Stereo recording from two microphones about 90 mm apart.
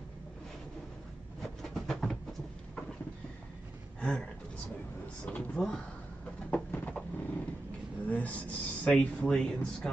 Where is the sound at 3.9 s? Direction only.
10° left (ahead or behind).